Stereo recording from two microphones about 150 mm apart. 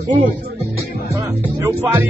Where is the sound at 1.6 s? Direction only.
20° right (ahead or behind).